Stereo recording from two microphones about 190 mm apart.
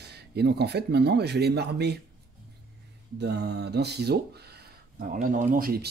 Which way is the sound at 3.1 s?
60° right (ahead or behind).